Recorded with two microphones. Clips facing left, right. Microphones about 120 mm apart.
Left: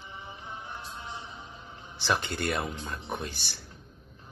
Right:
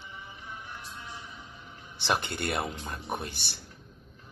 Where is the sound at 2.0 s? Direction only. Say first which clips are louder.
Even; 55° right (ahead or behind).